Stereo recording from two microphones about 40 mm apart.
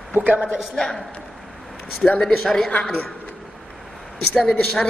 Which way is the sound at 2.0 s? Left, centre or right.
Centre.